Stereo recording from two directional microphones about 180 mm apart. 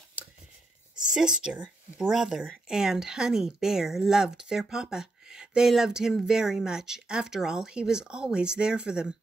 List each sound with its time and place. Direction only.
1.1 s speech: 5° right (ahead or behind)